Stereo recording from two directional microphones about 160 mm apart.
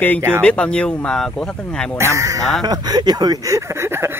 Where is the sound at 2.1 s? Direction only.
20° right (ahead or behind).